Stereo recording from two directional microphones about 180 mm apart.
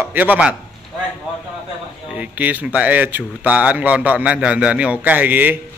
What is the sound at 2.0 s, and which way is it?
A man's voice, 5° right (ahead or behind).